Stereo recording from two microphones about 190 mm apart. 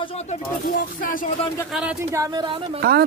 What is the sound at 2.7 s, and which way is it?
Speech, 55° right (ahead or behind).